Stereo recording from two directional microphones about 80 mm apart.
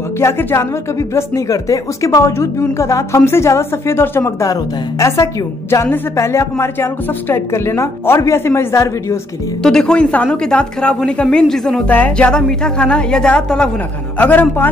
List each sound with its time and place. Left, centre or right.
0.2 s a woman's voice: left
4.2 s a woman's voice: left
9.6 s a woman's voice: centre
11.9 s a woman's voice: centre